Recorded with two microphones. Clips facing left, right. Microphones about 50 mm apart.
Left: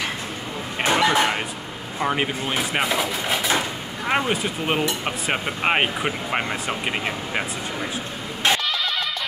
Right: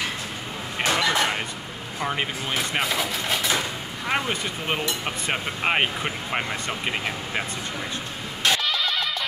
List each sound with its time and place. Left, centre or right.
0.7 s cough: centre
2.0 s speech: centre
3.5 s a sound: centre
4.3 s speech: centre
8.4 s vehicle: left